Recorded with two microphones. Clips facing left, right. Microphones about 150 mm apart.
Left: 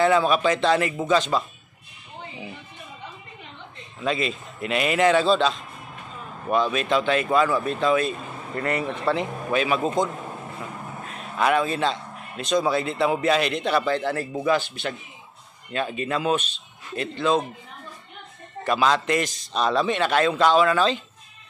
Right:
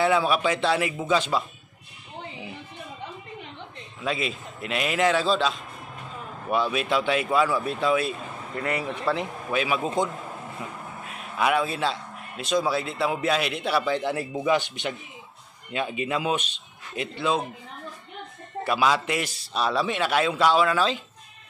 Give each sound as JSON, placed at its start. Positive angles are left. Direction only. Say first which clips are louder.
{"t": 0.0, "sound": "a man's voice", "louder": "left 3 dB", "side_deg": -5}
{"t": 4.0, "sound": "a man's voice", "louder": "left 3 dB", "side_deg": -5}
{"t": 11.1, "sound": "a man's voice", "louder": "left 2 dB", "side_deg": -5}
{"t": 18.6, "sound": "a man's voice", "louder": "left 2 dB", "side_deg": -5}